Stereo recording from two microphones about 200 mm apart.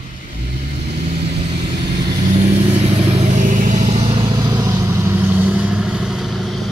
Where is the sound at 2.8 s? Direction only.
30° right (ahead or behind).